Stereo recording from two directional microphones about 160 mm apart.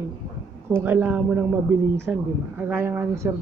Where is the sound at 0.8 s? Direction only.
10° right (ahead or behind).